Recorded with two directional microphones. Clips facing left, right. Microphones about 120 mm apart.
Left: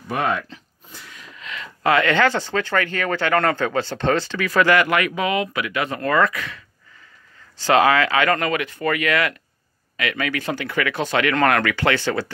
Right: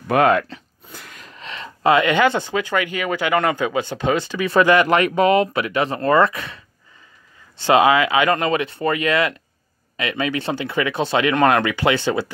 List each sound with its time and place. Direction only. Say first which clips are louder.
0.1 s speech: right 7 dB; 75° right (ahead or behind); by 4.8 s 20° right (ahead or behind)
4.8 s speech: right 5 dB; 30° right (ahead or behind)
7.6 s speech: right 2 dB; 20° right (ahead or behind)